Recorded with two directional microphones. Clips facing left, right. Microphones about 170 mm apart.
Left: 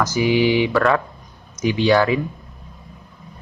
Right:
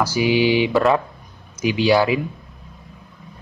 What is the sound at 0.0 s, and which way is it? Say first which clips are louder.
Speech: even; 10° right (ahead or behind).